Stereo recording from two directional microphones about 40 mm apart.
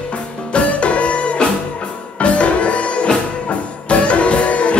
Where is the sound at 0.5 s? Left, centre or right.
Left.